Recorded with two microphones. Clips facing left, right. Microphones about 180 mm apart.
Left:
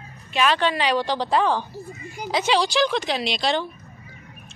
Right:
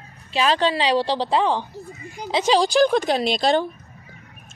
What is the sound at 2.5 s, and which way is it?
A woman's voice, 40° right (ahead or behind).